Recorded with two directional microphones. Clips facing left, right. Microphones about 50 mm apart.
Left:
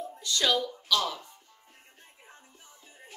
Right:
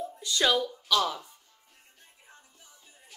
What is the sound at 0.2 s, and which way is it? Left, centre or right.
Speech, centre.